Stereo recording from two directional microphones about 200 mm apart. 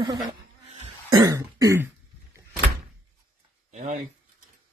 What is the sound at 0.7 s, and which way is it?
Cough, 30° right (ahead or behind).